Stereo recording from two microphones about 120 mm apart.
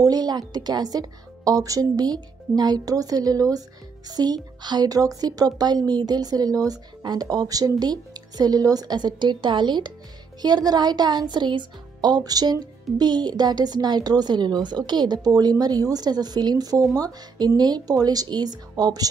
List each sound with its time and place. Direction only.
0.0 s speech: 35° right (ahead or behind)